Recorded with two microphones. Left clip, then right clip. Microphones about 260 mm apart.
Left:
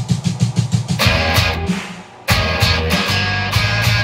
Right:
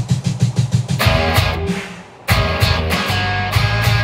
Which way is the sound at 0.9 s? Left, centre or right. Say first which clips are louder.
Left 1 dB; left.